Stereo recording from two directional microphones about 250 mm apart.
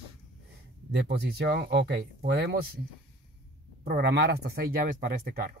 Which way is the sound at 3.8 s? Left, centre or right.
Right.